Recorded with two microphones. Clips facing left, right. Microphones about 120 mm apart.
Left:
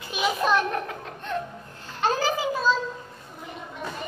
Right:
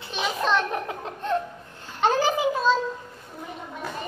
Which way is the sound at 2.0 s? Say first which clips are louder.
Right 3 dB; 20° right (ahead or behind).